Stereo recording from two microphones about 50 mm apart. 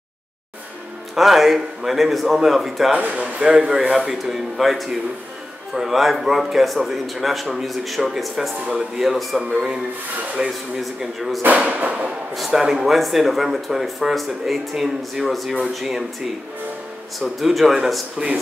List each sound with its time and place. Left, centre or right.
1.1 s speech: centre
3.0 s speech: right
3.4 s speech: centre
10.4 s speech: centre
10.8 s speech: centre
11.4 s speech: right
12.4 s speech: centre
17.2 s speech: centre
18.1 s speech: right